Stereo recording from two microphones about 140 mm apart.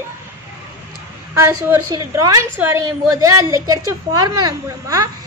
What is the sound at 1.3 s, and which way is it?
A woman's voice, 20° right (ahead or behind).